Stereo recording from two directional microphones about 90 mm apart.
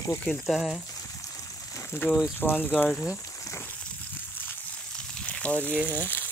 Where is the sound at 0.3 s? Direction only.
5° left (ahead or behind).